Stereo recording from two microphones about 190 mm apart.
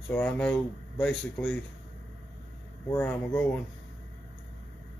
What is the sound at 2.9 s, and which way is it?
Speech, 10° left (ahead or behind).